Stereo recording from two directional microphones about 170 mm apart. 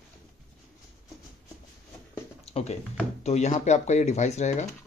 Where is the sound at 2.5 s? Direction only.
35° left (ahead or behind).